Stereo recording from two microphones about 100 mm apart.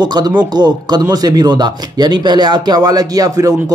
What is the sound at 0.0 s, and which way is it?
Speech, 50° right (ahead or behind).